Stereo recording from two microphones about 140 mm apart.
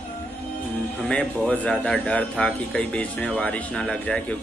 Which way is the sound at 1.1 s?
10° left (ahead or behind).